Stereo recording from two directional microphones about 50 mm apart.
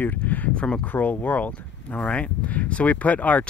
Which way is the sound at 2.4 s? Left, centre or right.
Left.